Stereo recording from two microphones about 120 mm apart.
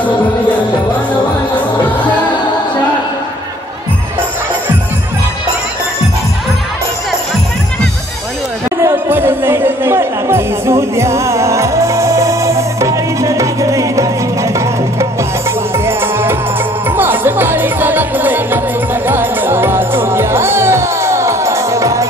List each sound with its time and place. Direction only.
8.8 s music: 20° right (ahead or behind)